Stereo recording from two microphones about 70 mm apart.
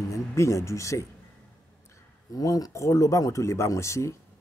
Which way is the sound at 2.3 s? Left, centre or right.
Left.